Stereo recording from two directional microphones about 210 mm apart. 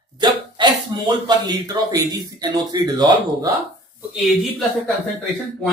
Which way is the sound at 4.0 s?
Centre (ahead or behind).